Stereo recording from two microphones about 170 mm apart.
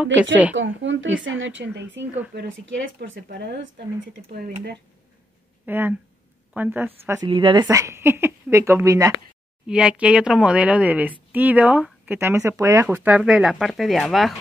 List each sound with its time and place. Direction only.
0.0 s speech: 10° right (ahead or behind)
0.6 s speech: 90° right
2.3 s speech: 75° right (ahead or behind)
5.7 s speech: 10° right (ahead or behind)
7.2 s speech: 30° right (ahead or behind)
9.7 s speech: 5° right (ahead or behind)